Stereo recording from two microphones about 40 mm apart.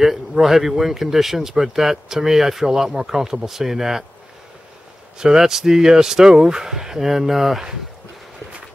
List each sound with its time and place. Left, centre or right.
0.0 s speech: centre
5.2 s speech: centre